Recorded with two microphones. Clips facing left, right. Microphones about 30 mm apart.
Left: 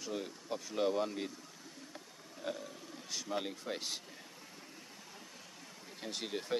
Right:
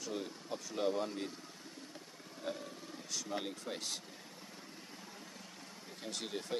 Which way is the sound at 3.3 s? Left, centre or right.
Centre.